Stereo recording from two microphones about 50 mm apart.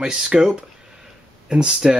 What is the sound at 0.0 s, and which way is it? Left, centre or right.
Speech, centre.